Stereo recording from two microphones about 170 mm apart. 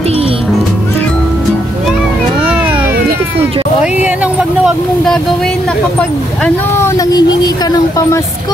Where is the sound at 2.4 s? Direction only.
5° right (ahead or behind).